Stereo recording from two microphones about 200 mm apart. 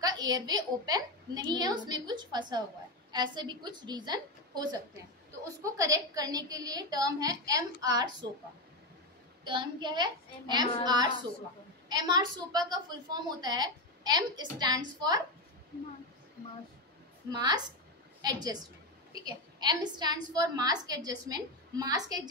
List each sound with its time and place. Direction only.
0.0 s a woman's voice: 20° right (ahead or behind)
9.4 s a woman's voice: 20° right (ahead or behind)
17.3 s a woman's voice: 20° right (ahead or behind)